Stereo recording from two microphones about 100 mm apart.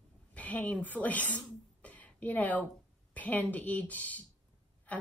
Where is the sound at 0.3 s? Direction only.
15° left (ahead or behind).